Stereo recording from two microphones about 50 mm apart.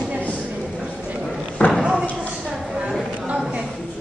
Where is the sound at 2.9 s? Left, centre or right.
Right.